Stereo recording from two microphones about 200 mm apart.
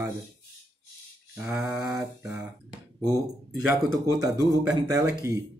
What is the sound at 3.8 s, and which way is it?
Speech, 20° right (ahead or behind).